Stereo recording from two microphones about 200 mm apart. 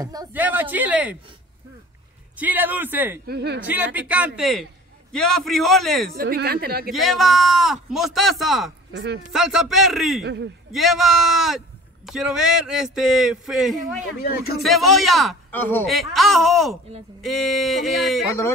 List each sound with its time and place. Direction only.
0.0 s a sound: 20° right (ahead or behind)
2.3 s speech: 10° right (ahead or behind)
3.3 s a woman's voice: 55° right (ahead or behind)
3.6 s a man's voice: 10° right (ahead or behind)
6.1 s a woman's voice: 50° right (ahead or behind)
6.9 s a man's voice: centre (ahead or behind)
8.9 s a man's voice: 55° right (ahead or behind)
9.3 s a man's voice: centre (ahead or behind)
10.2 s a man's voice: 60° right (ahead or behind)
10.7 s a man's voice: centre (ahead or behind)
14.2 s speech: 50° left (ahead or behind)
14.6 s a man's voice: centre (ahead or behind)